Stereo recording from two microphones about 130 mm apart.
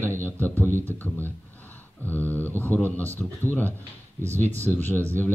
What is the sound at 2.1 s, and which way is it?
Speech, 15° left (ahead or behind).